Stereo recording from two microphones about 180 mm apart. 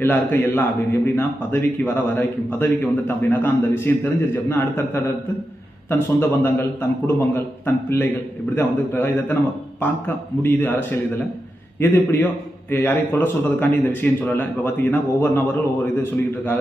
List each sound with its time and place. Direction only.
0.0 s a man's voice: 10° left (ahead or behind)